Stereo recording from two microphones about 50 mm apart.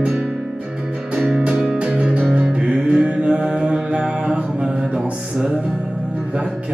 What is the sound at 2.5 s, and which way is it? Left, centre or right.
Mantra, centre.